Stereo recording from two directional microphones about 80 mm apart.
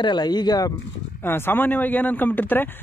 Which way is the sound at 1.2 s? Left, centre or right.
Left.